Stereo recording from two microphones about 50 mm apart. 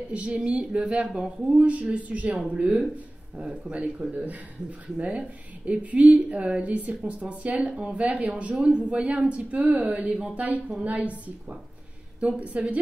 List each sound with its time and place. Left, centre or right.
0.1 s a woman's voice: right
1.6 s a woman's voice: right
2.3 s a woman's voice: centre